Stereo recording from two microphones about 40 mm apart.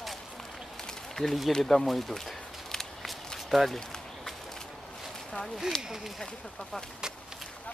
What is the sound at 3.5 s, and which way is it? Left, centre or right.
Speech, centre.